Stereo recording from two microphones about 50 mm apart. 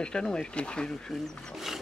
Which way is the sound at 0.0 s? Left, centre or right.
Centre.